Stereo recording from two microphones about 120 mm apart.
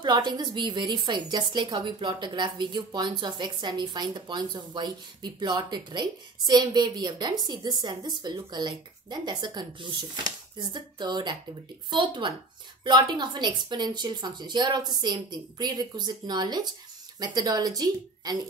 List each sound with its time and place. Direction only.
0.0 s a woman's voice: 40° right (ahead or behind)